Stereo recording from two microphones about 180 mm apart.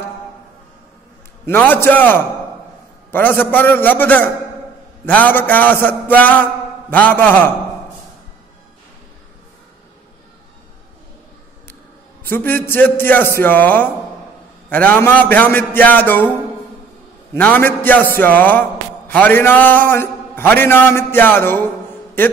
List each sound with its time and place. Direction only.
1.4 s a man's voice: 10° left (ahead or behind)
12.2 s a man's voice: 10° left (ahead or behind)
17.3 s a man's voice: 10° left (ahead or behind)